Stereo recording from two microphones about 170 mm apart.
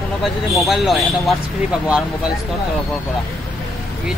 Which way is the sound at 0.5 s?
Centre (ahead or behind).